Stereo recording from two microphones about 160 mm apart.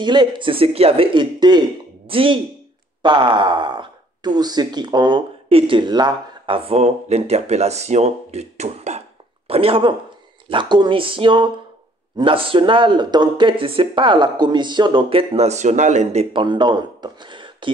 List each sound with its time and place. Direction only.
0.0 s speech: 30° right (ahead or behind)